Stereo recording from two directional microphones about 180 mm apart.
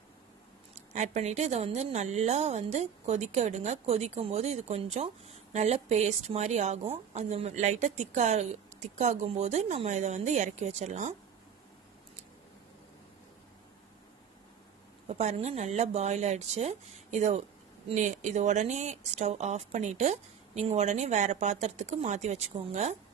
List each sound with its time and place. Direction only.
0.7 s speech: 40° right (ahead or behind)
15.0 s speech: 40° right (ahead or behind)